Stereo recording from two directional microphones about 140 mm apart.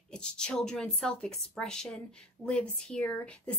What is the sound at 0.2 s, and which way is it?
A woman's voice, 5° left (ahead or behind).